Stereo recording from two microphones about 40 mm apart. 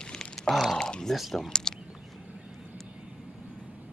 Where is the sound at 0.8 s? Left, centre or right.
Centre.